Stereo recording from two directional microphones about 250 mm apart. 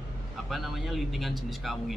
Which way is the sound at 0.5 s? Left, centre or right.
Centre.